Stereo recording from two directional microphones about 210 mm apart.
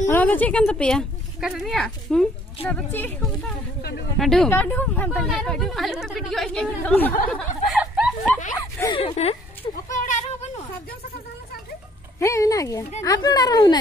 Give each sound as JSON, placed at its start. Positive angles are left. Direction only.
{"t": 0.1, "sound": "speech", "side_deg": 10}
{"t": 8.7, "sound": "speech", "side_deg": 15}
{"t": 9.0, "sound": "speech", "side_deg": 30}
{"t": 9.8, "sound": "a sound", "side_deg": 40}
{"t": 12.2, "sound": "speech", "side_deg": 15}